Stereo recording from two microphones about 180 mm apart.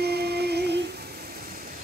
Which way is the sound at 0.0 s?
65° right (ahead or behind).